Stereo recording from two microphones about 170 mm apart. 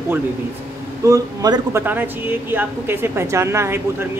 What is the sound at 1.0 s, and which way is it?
Speech, 20° right (ahead or behind).